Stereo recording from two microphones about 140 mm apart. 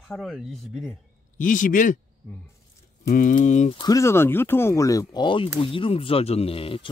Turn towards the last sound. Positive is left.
turn(degrees=40)  # may be behind; listen again after turning